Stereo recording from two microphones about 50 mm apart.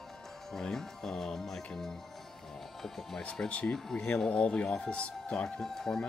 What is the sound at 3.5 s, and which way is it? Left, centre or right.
Speech, left.